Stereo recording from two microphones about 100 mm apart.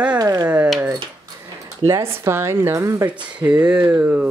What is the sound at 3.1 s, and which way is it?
A woman's voice, 10° right (ahead or behind).